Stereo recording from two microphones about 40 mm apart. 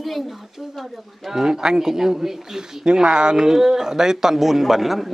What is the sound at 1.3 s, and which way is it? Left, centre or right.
Speech, centre.